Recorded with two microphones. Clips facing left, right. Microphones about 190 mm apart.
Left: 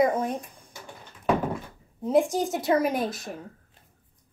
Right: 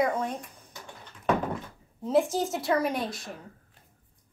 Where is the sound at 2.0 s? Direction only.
15° left (ahead or behind).